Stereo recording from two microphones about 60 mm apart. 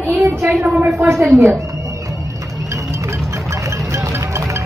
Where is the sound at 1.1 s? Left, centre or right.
Centre.